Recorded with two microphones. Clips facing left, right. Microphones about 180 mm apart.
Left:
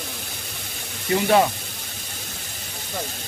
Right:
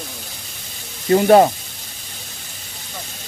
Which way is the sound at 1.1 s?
45° right (ahead or behind).